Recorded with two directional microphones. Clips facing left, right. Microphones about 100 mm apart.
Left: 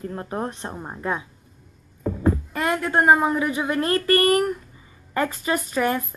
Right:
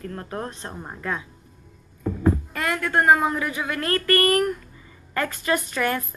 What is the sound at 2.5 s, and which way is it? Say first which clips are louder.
A woman's voice: left 2 dB; 20° left (ahead or behind).